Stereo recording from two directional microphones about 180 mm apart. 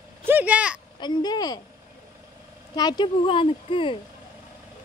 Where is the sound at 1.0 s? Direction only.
20° left (ahead or behind).